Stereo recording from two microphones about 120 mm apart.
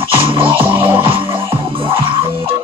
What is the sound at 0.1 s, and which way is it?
Music, 50° right (ahead or behind).